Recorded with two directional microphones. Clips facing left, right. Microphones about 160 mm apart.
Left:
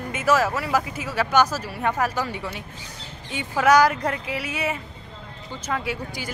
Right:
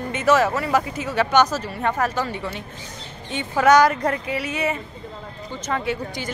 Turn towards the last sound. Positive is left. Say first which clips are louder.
# right 4 dB
turn(degrees=10)  # may be behind; listen again after turning